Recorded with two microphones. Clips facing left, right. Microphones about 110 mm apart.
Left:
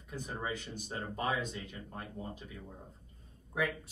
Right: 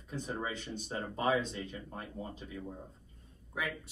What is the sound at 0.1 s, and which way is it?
Speech, 20° right (ahead or behind).